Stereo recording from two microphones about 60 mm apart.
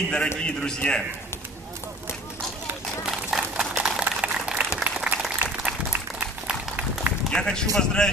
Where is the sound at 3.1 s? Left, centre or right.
Centre.